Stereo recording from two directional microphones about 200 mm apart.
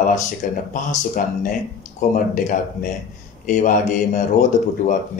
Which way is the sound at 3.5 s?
40° left (ahead or behind).